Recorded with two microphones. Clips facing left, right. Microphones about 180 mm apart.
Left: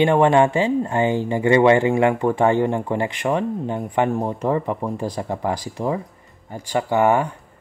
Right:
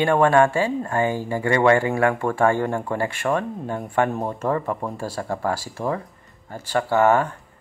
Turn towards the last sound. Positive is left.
turn(degrees=15)  # may be behind; listen again after turning